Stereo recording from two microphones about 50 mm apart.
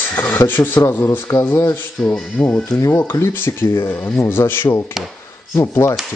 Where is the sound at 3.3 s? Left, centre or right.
Left.